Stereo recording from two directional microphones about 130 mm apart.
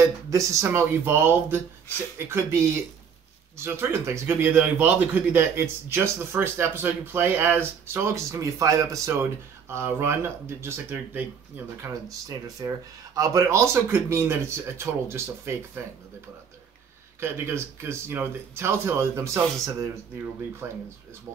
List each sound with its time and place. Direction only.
0.0 s speech: 25° right (ahead or behind)
12.1 s speech: 25° right (ahead or behind)
17.2 s speech: 20° right (ahead or behind)